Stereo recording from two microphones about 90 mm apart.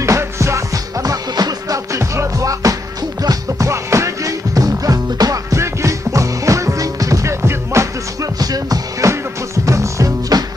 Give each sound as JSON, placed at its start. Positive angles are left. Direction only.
{"t": 0.0, "sound": "music", "side_deg": -35}